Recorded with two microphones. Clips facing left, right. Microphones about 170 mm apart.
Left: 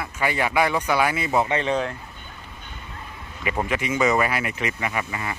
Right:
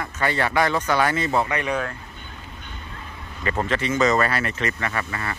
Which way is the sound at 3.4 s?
10° left (ahead or behind).